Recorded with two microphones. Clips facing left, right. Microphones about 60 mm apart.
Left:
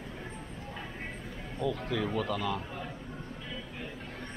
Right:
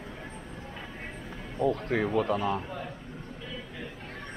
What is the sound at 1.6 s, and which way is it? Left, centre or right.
Speech, right.